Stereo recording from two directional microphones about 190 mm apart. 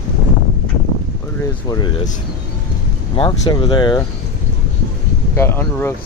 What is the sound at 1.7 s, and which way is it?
Speech, 25° left (ahead or behind).